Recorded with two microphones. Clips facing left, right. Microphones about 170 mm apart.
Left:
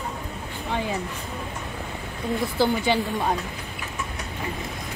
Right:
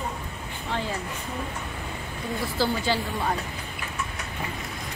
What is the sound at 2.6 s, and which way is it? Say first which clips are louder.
Speech: left 3 dB; 20° left (ahead or behind).